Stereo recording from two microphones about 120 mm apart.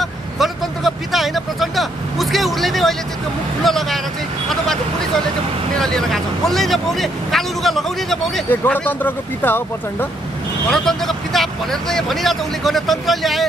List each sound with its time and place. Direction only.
0.0 s vehicle: centre (ahead or behind)
3.6 s speech: centre (ahead or behind)
5.8 s speech: 5° left (ahead or behind)
8.5 s speech: 15° left (ahead or behind)
10.7 s speech: 5° left (ahead or behind)